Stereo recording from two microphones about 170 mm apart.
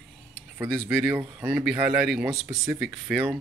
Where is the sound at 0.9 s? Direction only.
10° right (ahead or behind).